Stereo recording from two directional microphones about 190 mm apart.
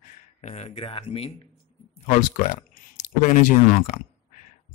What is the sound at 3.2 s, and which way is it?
Speech, 45° left (ahead or behind).